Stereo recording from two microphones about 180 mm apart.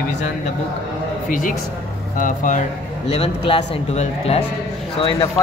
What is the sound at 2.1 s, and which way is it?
Speech, 45° left (ahead or behind).